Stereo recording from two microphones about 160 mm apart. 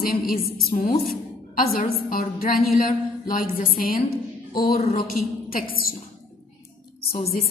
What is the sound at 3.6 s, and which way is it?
A woman's voice, 65° left (ahead or behind).